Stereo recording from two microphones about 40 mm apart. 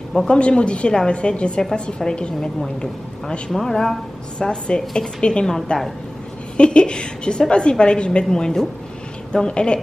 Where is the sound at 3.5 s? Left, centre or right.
Centre.